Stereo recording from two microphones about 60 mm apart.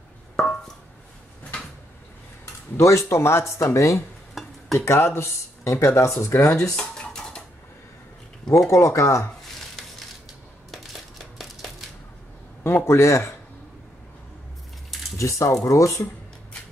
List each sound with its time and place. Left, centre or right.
1.5 s a sound: centre
2.8 s speech: left
4.4 s stir: centre
4.7 s speech: left
6.8 s a sound: centre
8.6 s speech: left
10.7 s crumpling: centre
12.6 s speech: left
15.1 s speech: left